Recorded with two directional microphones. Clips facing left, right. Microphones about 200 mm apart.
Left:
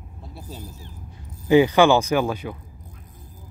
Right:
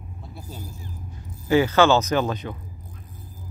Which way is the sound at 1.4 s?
15° left (ahead or behind).